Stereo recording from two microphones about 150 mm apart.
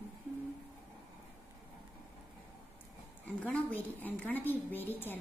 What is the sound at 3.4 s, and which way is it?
A woman's voice, 10° left (ahead or behind).